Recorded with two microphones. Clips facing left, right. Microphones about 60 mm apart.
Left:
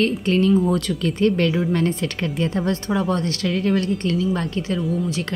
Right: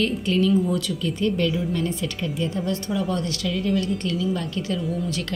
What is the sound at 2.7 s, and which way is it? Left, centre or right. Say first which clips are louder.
A woman's voice: left 4 dB; left.